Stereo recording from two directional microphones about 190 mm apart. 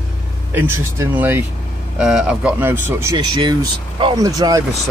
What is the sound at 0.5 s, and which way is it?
Speech, 10° right (ahead or behind).